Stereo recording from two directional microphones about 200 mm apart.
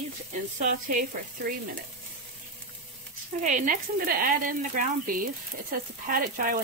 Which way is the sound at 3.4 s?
40° right (ahead or behind).